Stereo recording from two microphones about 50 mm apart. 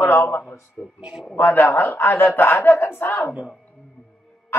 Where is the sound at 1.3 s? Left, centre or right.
Left.